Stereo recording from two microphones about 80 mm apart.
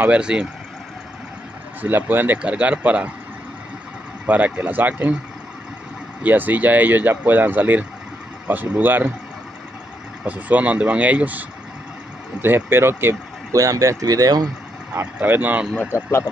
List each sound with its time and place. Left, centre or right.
0.0 s speech: centre
1.8 s speech: right
2.3 s speech: centre
4.3 s speech: centre
6.2 s speech: right
10.2 s speech: centre
13.6 s speech: right
15.2 s speech: right
15.8 s speech: left